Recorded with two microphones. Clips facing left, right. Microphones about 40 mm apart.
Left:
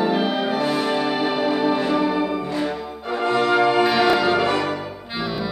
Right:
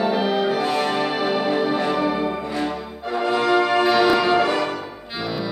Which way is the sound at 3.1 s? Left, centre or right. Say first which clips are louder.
Even; centre.